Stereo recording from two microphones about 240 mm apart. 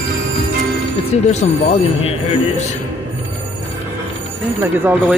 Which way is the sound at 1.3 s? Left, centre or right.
Left.